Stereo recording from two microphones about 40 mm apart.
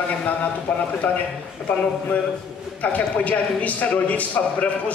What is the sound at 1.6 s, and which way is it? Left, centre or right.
Speech, centre.